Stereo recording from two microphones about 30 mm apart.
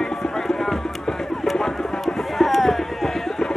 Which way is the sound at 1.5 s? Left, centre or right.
Left.